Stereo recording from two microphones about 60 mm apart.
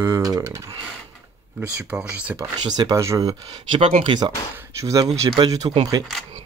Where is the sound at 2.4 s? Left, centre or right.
Right.